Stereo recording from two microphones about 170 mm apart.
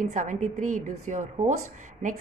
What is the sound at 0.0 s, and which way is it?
A woman's voice, 50° right (ahead or behind).